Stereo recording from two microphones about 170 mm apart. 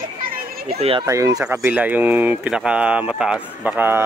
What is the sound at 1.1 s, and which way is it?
Speech, 20° right (ahead or behind).